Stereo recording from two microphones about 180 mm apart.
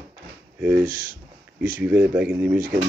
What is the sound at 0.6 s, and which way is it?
Speech, 10° right (ahead or behind).